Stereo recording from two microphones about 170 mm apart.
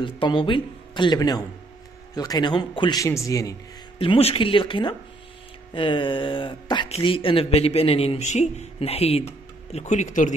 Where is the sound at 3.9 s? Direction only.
35° left (ahead or behind).